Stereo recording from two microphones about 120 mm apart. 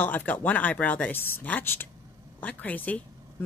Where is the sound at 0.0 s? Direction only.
15° left (ahead or behind).